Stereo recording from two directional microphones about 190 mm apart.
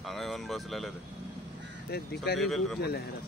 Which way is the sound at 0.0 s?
Centre (ahead or behind).